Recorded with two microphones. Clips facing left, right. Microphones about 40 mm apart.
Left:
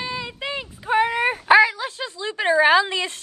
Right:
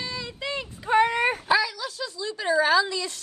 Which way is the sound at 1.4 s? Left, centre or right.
Left.